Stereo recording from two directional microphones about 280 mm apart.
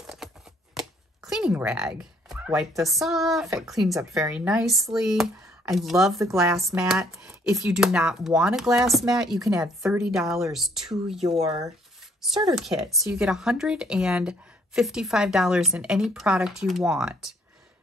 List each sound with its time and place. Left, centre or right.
0.0 s shuffling cards: centre
1.2 s speech: centre
11.2 s speech: right
12.5 s speech: centre